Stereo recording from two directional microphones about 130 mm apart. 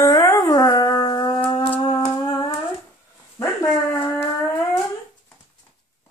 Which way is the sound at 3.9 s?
15° left (ahead or behind).